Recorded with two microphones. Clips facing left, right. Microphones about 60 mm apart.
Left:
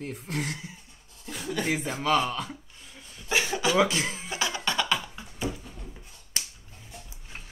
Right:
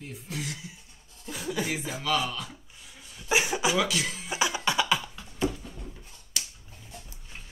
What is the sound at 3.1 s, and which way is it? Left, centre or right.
Cough, centre.